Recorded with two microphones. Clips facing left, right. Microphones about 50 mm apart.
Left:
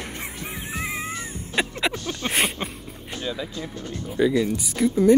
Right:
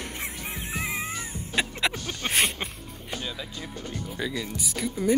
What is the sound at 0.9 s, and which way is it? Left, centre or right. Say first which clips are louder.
Cat: left 2 dB; centre.